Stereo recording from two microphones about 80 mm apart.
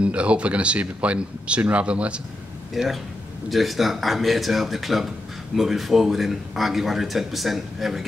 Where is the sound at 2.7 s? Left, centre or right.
Centre.